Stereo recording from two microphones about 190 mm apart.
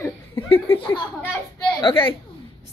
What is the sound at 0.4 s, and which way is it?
Chuckle, 30° left (ahead or behind).